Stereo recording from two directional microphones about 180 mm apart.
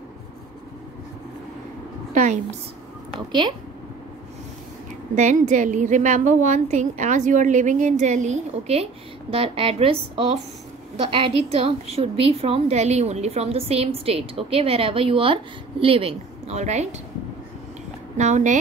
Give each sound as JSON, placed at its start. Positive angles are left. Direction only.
{"t": 3.3, "sound": "a woman's voice", "side_deg": -25}
{"t": 5.1, "sound": "a woman's voice", "side_deg": -40}
{"t": 18.1, "sound": "a woman's voice", "side_deg": -40}